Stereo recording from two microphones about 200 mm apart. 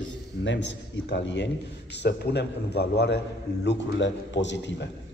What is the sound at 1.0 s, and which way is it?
A man's voice, 65° left (ahead or behind).